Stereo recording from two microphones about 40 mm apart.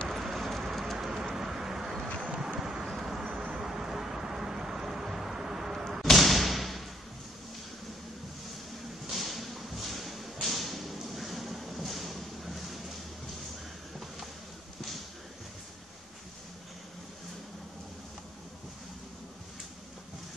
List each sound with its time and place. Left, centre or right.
0.1 s vehicle: centre
6.0 s thump: centre
9.0 s a sound: centre